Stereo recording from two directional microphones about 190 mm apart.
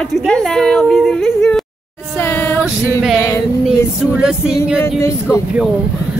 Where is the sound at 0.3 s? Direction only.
5° left (ahead or behind).